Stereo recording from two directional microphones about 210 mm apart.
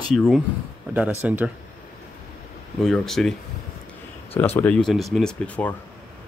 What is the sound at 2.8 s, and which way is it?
Speech, centre (ahead or behind).